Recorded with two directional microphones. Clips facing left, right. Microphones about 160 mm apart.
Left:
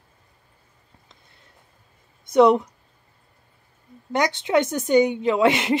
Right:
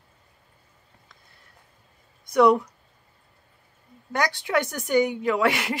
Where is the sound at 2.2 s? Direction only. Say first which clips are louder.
Left 3 dB; 20° left (ahead or behind).